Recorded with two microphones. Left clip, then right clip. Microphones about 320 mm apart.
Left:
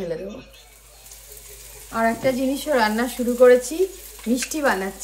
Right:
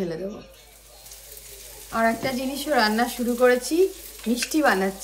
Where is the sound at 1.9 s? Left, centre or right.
Centre.